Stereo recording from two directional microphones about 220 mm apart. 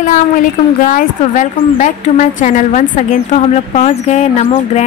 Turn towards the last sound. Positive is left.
turn(degrees=30)  # may be behind; listen again after turning